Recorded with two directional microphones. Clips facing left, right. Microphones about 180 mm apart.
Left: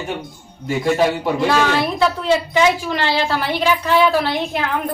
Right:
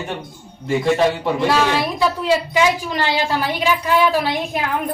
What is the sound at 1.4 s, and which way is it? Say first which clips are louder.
Speech: even; 10° right (ahead or behind).